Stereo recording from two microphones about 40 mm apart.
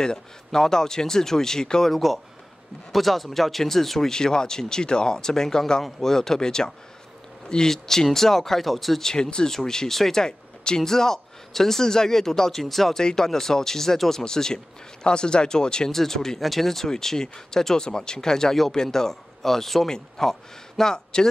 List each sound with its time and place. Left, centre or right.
0.0 s speech: centre
1.9 s speech: centre
4.1 s speech: centre
9.0 s speech: centre